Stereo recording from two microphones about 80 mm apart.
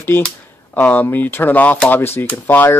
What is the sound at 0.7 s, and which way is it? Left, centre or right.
Speech, left.